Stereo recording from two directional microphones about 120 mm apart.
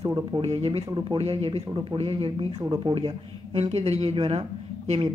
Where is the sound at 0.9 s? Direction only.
40° right (ahead or behind).